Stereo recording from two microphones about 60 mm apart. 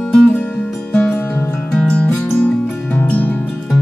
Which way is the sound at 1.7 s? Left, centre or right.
Centre.